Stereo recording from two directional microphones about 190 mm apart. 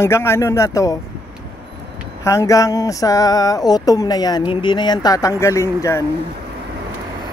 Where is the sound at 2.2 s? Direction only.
15° left (ahead or behind).